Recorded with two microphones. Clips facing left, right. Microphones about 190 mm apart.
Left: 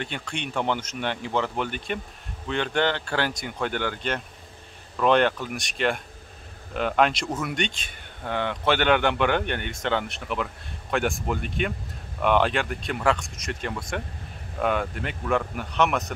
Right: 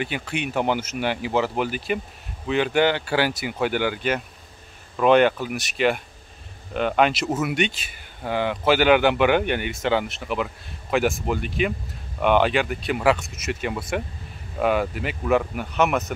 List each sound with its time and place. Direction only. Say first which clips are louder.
0.0 s speech: right 5 dB; 5° right (ahead or behind)